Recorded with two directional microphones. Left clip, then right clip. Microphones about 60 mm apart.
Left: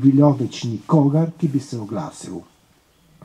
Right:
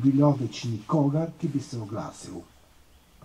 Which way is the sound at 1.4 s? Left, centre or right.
Centre.